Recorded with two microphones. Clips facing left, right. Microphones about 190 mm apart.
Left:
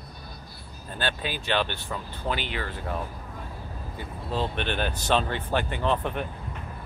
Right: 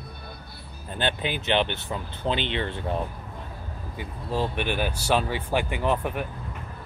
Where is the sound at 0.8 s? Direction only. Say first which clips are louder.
Right 3 dB; 20° right (ahead or behind).